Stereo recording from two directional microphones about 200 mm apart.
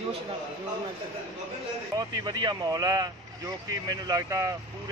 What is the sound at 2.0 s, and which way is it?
Speech, 20° right (ahead or behind).